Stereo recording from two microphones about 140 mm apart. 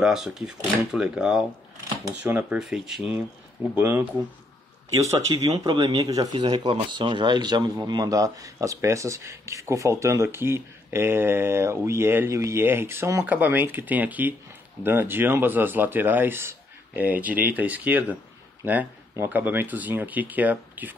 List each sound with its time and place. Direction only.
0.0 s speech: 5° right (ahead or behind)
2.6 s speech: centre (ahead or behind)
5.6 s speech: 30° right (ahead or behind); by 20.9 s 10° right (ahead or behind)